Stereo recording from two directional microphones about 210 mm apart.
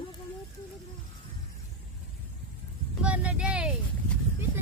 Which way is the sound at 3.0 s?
5° right (ahead or behind).